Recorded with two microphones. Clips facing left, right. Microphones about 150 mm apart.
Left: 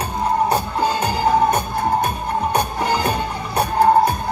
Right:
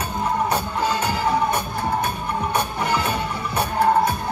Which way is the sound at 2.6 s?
35° left (ahead or behind).